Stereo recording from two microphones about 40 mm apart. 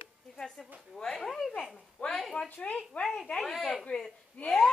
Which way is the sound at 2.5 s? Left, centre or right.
Left.